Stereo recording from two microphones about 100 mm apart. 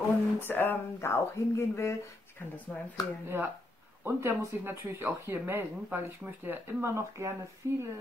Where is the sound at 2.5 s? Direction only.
15° left (ahead or behind).